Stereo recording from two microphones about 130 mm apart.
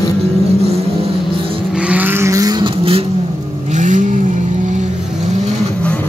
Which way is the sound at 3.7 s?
70° right (ahead or behind).